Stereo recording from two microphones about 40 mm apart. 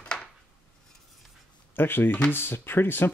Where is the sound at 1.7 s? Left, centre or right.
Left.